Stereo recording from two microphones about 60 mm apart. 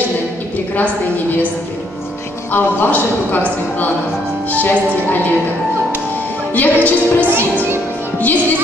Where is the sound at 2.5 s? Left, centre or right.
Left.